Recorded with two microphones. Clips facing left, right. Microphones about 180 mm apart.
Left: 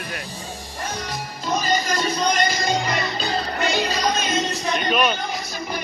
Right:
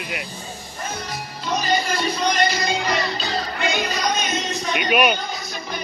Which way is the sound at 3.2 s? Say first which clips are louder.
Left 2 dB; 45° left (ahead or behind).